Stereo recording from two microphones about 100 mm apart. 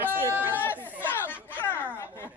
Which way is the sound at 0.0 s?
20° right (ahead or behind).